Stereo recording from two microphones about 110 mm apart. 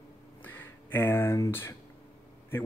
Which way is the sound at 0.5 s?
20° left (ahead or behind).